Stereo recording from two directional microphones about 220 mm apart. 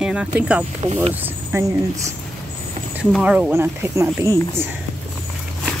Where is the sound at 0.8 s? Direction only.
30° right (ahead or behind).